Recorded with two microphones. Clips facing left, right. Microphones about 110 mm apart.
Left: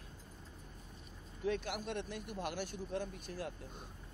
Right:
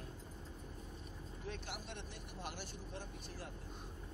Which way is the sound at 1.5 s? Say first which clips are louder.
Left 11 dB; 55° left (ahead or behind).